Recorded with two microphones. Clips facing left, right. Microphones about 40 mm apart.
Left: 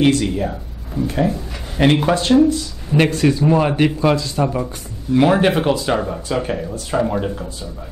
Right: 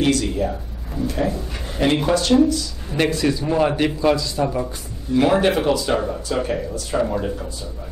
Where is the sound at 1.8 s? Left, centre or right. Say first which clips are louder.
Left 3 dB; left.